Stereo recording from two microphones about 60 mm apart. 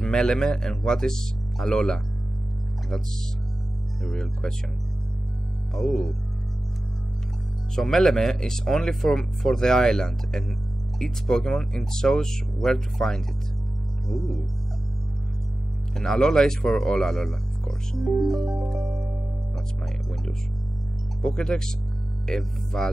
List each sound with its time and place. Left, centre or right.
0.0 s speech: centre
4.0 s speech: centre
5.8 s speech: centre
7.7 s speech: centre
15.9 s speech: centre
21.2 s speech: centre